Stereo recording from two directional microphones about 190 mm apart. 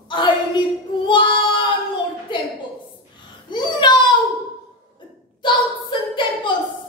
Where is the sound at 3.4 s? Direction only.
25° left (ahead or behind).